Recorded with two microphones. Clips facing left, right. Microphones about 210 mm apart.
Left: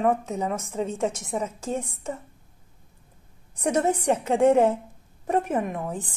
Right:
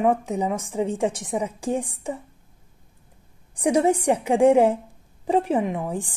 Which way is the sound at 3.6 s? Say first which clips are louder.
Right 4 dB; 10° right (ahead or behind).